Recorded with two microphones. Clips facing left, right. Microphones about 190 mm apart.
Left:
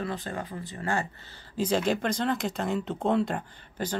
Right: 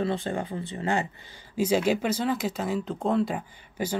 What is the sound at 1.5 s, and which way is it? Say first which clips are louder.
A woman's voice: right 3 dB; 10° right (ahead or behind).